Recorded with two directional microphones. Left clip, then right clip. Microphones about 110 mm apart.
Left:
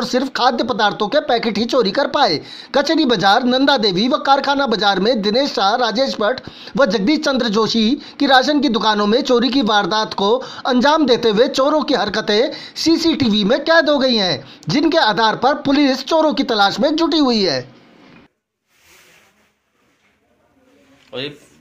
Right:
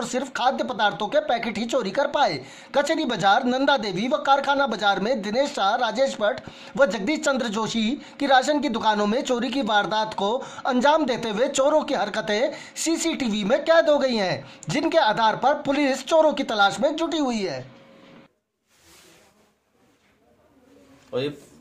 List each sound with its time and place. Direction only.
0.0 s speech: 25° left (ahead or behind)